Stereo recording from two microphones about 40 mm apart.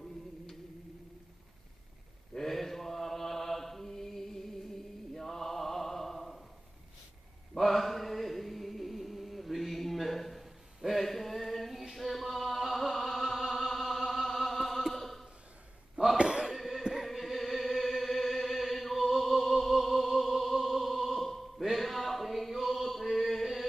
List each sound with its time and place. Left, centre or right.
2.3 s mantra: centre
7.5 s chant: centre
16.2 s a sound: centre
16.5 s music: centre